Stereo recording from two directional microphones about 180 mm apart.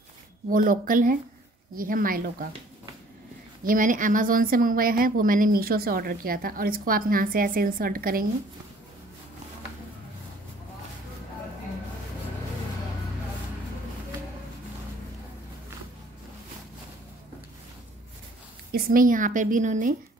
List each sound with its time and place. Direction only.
0.5 s speech: 50° right (ahead or behind)
3.6 s speech: 50° right (ahead or behind)
18.7 s speech: 55° right (ahead or behind)